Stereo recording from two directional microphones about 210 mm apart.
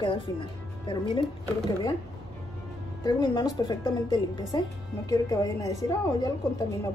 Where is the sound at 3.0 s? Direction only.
20° left (ahead or behind).